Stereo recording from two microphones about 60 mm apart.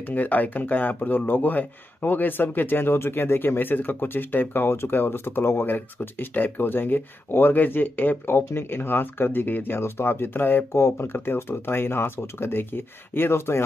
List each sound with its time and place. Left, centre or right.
0.1 s speech: left
8.4 s speech: left